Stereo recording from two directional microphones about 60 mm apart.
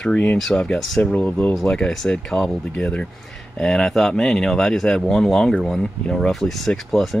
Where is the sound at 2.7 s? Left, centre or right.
Centre.